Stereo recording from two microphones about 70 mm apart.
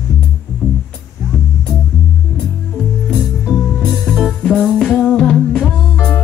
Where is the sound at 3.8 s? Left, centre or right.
Centre.